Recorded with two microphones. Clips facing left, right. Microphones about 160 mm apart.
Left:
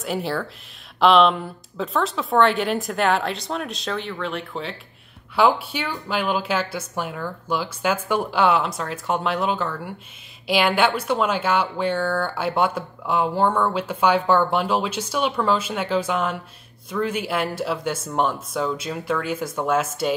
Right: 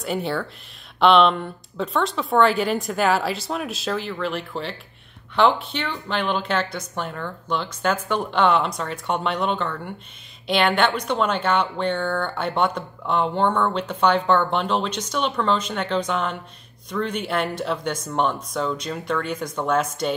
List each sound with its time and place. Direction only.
0.0 s speech: centre (ahead or behind)